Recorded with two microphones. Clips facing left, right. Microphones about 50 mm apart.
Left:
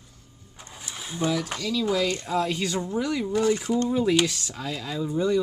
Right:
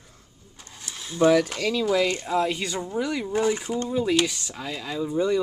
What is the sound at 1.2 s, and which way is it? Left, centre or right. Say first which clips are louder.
Speech: right 8 dB; right.